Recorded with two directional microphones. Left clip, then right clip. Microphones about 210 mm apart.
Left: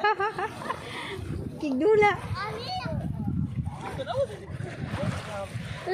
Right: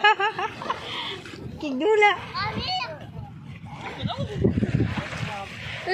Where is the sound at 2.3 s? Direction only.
50° left (ahead or behind).